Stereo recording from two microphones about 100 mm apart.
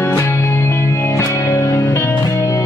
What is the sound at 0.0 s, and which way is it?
Music, 25° left (ahead or behind).